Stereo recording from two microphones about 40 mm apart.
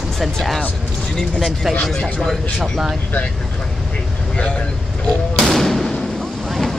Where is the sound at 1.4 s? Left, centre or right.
Centre.